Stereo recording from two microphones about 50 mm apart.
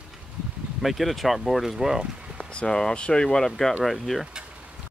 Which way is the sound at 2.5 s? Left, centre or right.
Centre.